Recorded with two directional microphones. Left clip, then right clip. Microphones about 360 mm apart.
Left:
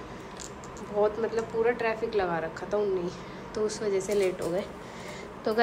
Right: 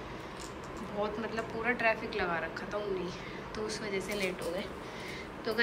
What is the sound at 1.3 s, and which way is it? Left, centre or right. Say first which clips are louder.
A woman's voice: left 7 dB; centre.